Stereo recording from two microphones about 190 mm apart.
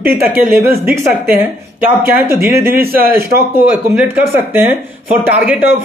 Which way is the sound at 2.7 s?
50° right (ahead or behind).